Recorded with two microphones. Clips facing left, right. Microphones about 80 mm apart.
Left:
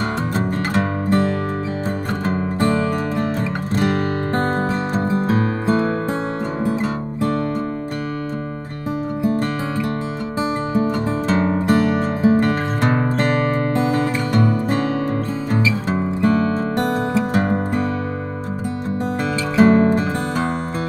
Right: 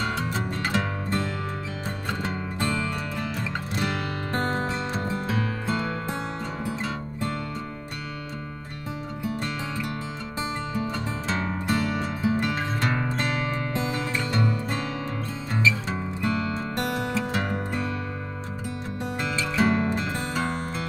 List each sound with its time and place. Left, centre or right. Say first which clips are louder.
0.3 s music: left 7 dB; left
9.2 s music: left 9 dB; left
11.2 s music: left 10 dB; left
11.6 s music: left 9 dB; left
15.9 s music: left 10 dB; left
19.5 s music: left 11 dB; left